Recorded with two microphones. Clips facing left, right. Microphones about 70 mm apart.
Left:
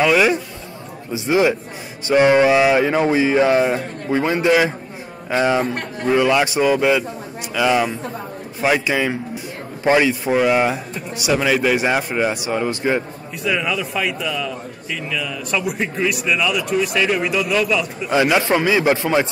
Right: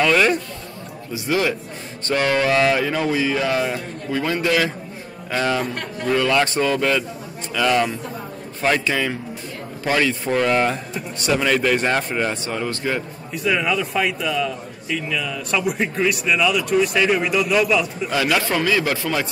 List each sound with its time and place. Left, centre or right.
0.0 s a man's voice: centre
1.1 s a man's voice: left
13.3 s speech: centre
18.1 s speech: left